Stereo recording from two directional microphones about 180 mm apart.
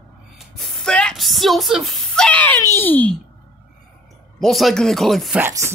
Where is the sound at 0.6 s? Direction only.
Centre (ahead or behind).